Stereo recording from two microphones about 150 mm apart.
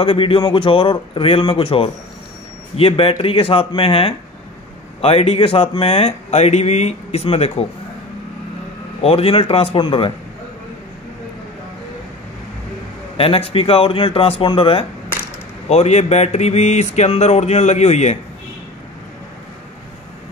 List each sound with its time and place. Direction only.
0.0 s a man's voice: 35° left (ahead or behind)
9.0 s a man's voice: 40° left (ahead or behind)
13.2 s a man's voice: 40° left (ahead or behind)